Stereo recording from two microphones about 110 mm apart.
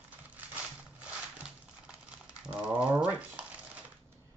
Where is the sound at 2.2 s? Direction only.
10° right (ahead or behind).